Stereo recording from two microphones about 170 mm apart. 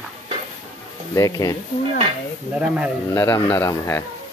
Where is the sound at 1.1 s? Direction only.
20° left (ahead or behind).